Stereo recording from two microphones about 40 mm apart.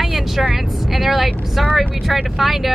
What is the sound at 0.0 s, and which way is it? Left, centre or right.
Speech, centre.